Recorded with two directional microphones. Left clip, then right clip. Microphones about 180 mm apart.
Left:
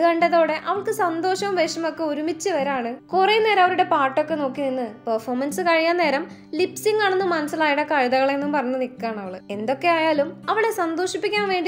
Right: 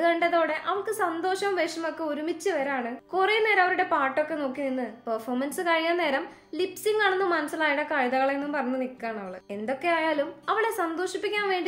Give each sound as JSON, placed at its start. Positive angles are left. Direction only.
{"t": 0.0, "sound": "a woman's voice", "side_deg": 30}